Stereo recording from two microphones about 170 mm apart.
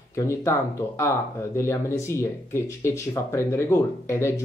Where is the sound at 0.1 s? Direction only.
15° left (ahead or behind).